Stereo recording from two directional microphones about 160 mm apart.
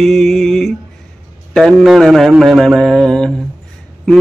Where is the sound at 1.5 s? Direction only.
Centre (ahead or behind).